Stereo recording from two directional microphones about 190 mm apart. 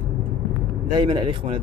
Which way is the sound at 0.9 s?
25° right (ahead or behind).